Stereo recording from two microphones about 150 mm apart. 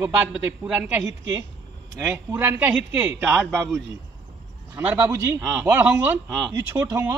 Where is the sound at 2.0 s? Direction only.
15° right (ahead or behind).